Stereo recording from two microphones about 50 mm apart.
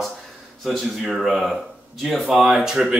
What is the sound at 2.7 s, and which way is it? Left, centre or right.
Speech, centre.